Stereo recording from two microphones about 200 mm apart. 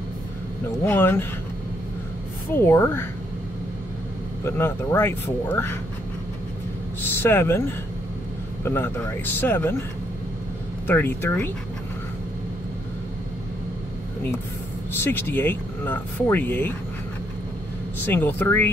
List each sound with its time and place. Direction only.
0.8 s speech: 10° left (ahead or behind)
2.5 s speech: 10° left (ahead or behind)
4.5 s speech: 10° left (ahead or behind)
7.2 s speech: 10° left (ahead or behind)
10.9 s speech: 10° left (ahead or behind)
15.0 s speech: 10° left (ahead or behind)
18.0 s speech: 10° left (ahead or behind)